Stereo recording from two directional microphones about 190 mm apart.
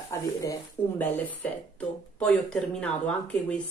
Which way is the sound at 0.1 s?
15° left (ahead or behind).